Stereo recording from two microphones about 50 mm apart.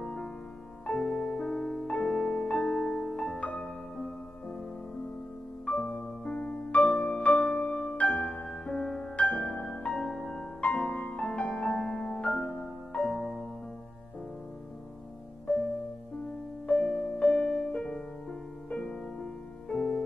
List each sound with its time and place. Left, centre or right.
0.0 s music: centre
5.7 s music: left
6.8 s music: centre
7.1 s music: left
16.6 s music: left